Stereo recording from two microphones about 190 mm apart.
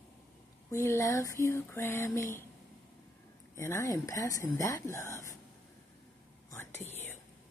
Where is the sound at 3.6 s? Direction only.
15° left (ahead or behind).